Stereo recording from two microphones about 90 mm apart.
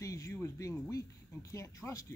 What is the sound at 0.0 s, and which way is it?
Speech, 35° left (ahead or behind).